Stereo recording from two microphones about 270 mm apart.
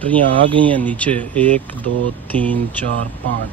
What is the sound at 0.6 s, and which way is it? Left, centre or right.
Speech, centre.